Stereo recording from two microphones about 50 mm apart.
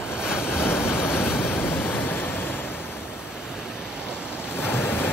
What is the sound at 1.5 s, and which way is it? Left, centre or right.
Waves, left.